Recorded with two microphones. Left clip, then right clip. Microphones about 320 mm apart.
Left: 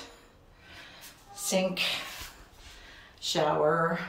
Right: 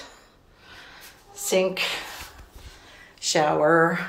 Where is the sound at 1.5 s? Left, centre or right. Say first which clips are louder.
Right 6 dB; centre.